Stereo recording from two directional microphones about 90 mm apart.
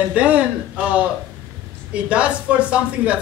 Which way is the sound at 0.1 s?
15° right (ahead or behind).